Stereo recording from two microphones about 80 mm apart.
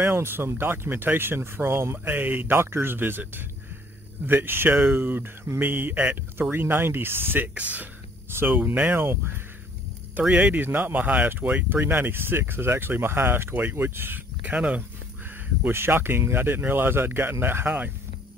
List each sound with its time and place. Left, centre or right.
0.0 s speech: right
10.2 s speech: centre
10.5 s speech: right